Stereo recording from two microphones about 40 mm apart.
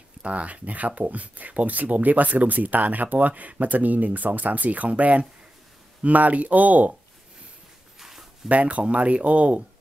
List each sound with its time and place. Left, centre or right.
0.2 s speech: right
8.0 s a sound: centre
8.5 s speech: right